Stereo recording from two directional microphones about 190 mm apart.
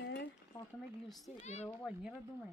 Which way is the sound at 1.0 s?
Centre (ahead or behind).